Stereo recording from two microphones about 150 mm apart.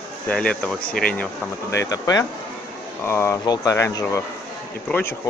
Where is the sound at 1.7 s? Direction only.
20° left (ahead or behind).